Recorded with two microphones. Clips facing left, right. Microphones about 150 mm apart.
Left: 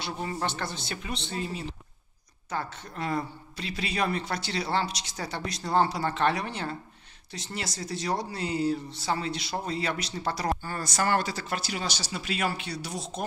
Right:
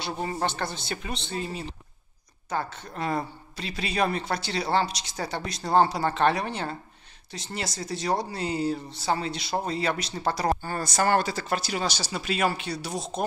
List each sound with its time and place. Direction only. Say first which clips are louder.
0.0 s a woman's voice: right 3 dB; 30° right (ahead or behind)